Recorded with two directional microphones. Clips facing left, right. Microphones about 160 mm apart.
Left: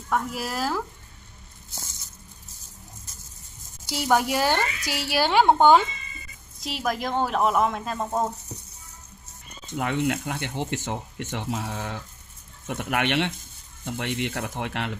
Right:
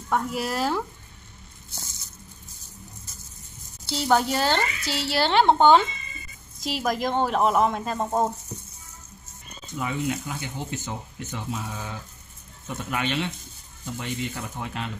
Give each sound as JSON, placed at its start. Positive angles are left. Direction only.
{"t": 0.1, "sound": "speech", "side_deg": 5}
{"t": 3.8, "sound": "speech", "side_deg": 10}
{"t": 6.6, "sound": "speech", "side_deg": 0}
{"t": 9.8, "sound": "speech", "side_deg": 70}